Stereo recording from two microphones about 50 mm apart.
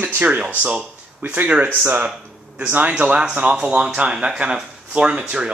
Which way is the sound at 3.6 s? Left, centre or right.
Right.